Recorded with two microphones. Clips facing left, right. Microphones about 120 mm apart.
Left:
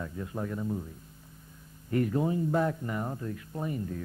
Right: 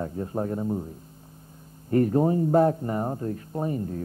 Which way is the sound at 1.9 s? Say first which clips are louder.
Right 7 dB; 40° right (ahead or behind).